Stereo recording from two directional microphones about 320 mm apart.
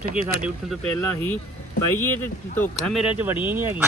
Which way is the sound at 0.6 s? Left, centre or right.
Centre.